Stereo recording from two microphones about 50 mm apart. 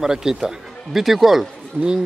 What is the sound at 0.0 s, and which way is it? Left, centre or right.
A man's voice, centre.